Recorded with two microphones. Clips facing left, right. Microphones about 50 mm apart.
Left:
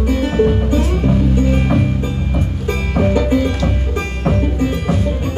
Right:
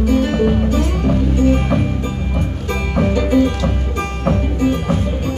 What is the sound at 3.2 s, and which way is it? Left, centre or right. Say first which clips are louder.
Music: right 1 dB; centre.